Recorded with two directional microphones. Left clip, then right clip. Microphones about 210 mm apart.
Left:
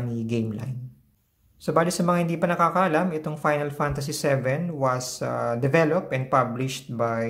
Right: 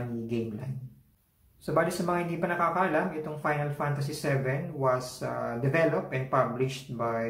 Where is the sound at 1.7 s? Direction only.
50° left (ahead or behind).